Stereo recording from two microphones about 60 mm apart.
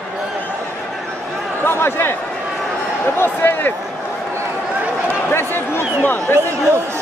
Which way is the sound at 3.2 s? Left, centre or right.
Left.